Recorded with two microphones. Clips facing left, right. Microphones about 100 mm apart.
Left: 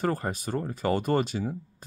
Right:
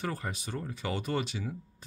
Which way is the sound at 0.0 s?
45° left (ahead or behind).